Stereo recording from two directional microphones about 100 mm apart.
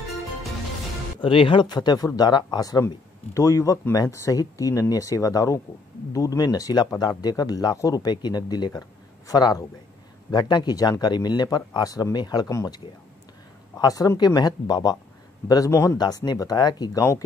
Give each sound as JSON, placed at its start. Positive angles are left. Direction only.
{"t": 1.2, "sound": "speech", "side_deg": 60}
{"t": 3.3, "sound": "speech", "side_deg": 30}
{"t": 15.7, "sound": "speech", "side_deg": 25}
{"t": 16.0, "sound": "speech", "side_deg": 40}